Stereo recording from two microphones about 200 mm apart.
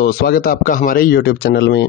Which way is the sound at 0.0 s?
50° left (ahead or behind).